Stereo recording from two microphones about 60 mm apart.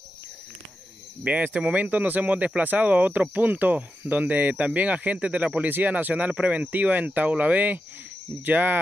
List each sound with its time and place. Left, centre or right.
1.2 s speech: right